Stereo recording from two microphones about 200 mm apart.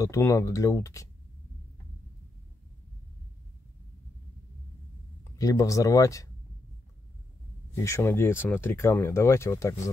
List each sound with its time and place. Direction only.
0.0 s speech: 15° left (ahead or behind)
5.2 s speech: 15° left (ahead or behind)
7.7 s speech: 15° left (ahead or behind)